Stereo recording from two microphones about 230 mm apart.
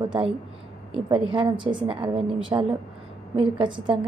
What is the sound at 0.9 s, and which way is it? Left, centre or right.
A woman's voice, right.